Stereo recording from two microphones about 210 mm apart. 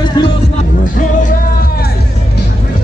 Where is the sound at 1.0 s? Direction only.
40° left (ahead or behind).